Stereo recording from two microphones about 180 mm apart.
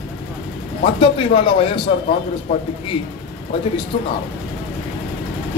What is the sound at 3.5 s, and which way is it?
Speech, 30° left (ahead or behind).